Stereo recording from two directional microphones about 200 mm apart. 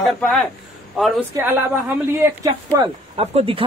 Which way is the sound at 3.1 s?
30° right (ahead or behind).